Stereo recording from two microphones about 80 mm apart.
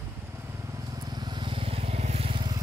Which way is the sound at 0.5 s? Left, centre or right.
Right.